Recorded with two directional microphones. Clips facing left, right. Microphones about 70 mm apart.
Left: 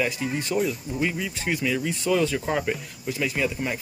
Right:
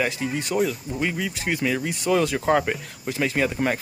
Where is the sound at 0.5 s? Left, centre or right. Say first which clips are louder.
Right 2 dB; right.